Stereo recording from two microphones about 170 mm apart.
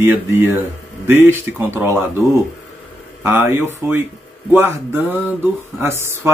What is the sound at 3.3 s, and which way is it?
Speech, 15° right (ahead or behind).